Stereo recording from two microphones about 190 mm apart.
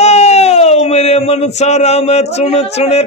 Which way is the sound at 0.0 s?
35° left (ahead or behind).